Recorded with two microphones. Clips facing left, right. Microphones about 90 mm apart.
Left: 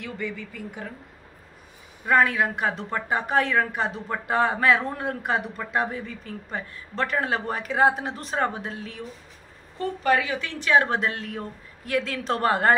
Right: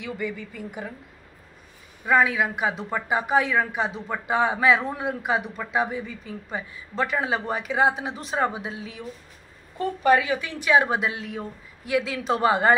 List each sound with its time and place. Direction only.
0.2 s a woman's voice: 15° right (ahead or behind)
2.0 s a woman's voice: 5° right (ahead or behind)
9.8 s a woman's voice: 20° right (ahead or behind); by 12.7 s 5° right (ahead or behind)